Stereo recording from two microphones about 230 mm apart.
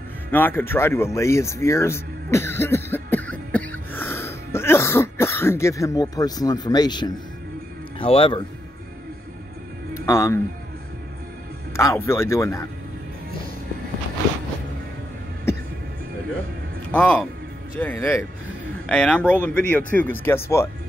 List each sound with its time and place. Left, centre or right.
0.3 s a sound: centre
8.0 s speech: left
9.9 s speech: centre
11.7 s speech: centre
16.9 s speech: centre